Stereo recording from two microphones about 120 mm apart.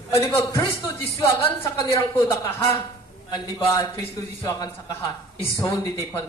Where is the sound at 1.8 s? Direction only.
25° left (ahead or behind).